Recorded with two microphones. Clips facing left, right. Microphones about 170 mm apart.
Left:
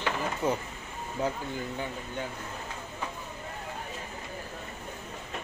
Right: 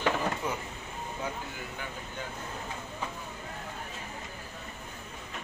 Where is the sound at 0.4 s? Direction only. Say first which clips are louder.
Left 6 dB; 25° left (ahead or behind).